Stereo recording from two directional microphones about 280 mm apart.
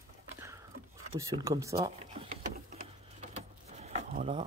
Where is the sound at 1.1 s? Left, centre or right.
Centre.